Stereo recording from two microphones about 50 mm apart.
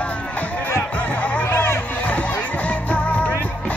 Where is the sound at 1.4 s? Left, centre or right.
Left.